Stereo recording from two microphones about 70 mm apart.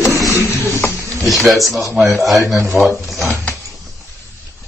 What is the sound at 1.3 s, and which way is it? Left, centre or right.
Speech, centre.